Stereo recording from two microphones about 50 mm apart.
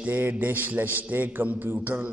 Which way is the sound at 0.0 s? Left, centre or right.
Right.